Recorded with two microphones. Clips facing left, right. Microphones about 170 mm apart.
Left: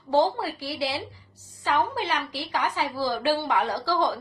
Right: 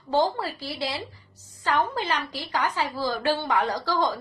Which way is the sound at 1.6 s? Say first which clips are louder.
Even; 10° left (ahead or behind).